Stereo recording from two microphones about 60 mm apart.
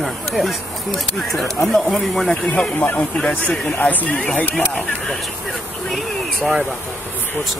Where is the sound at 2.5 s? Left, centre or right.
Left.